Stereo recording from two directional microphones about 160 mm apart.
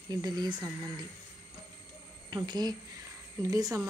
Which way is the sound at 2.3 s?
25° right (ahead or behind).